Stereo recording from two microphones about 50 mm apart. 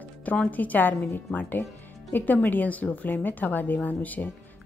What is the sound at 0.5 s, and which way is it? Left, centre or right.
A woman's voice, left.